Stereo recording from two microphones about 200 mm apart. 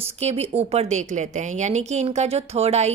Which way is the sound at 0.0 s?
30° right (ahead or behind).